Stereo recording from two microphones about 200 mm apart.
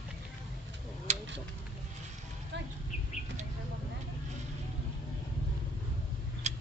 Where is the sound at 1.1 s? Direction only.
35° right (ahead or behind).